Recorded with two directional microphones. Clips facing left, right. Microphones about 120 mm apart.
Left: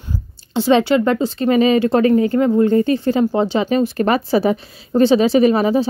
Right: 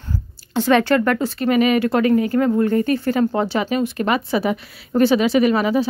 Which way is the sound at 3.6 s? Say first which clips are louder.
Left 4 dB; 35° left (ahead or behind).